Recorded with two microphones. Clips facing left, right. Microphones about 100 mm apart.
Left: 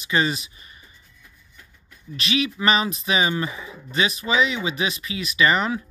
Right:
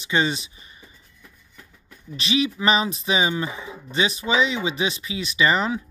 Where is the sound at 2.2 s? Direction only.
30° right (ahead or behind).